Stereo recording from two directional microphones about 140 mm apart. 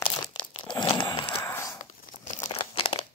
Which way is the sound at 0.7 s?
35° left (ahead or behind).